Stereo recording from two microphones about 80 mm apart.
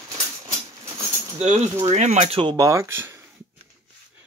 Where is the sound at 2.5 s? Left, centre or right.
Right.